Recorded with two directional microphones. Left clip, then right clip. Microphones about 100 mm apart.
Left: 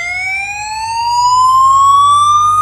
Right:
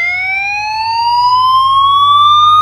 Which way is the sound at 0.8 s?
55° right (ahead or behind).